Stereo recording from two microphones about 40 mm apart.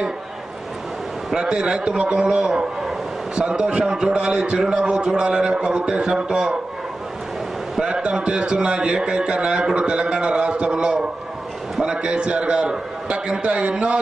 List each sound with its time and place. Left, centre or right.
1.3 s a man's voice: right
7.8 s a man's voice: right